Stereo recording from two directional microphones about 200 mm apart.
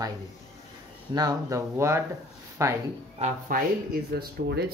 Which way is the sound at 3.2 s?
45° right (ahead or behind).